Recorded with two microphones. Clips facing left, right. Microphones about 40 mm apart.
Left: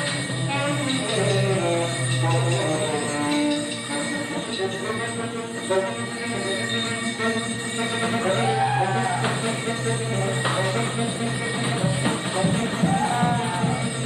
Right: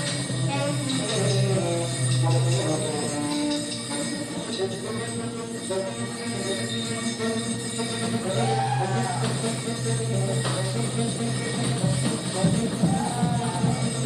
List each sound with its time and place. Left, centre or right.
0.7 s music: left
8.1 s music: left
8.5 s music: left
11.8 s music: left